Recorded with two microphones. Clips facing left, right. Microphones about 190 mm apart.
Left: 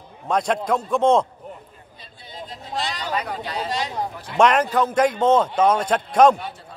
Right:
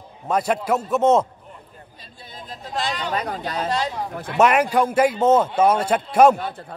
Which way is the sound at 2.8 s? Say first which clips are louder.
Right 2 dB; 45° right (ahead or behind).